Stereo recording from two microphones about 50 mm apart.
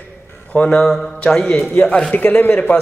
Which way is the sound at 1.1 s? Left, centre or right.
Centre.